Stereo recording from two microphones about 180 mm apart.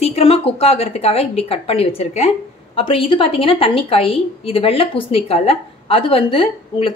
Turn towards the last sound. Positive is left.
turn(degrees=30)  # may be behind; listen again after turning